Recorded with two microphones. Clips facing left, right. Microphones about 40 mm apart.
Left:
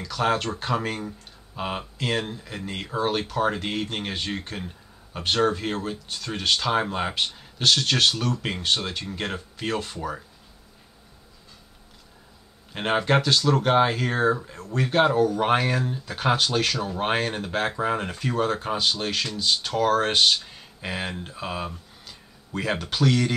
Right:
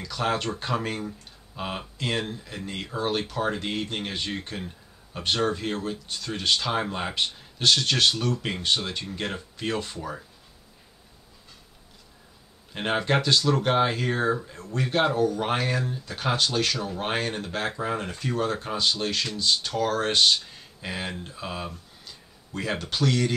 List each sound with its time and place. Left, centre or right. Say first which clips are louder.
0.0 s speech: left 3 dB; centre
12.7 s speech: left 3 dB; centre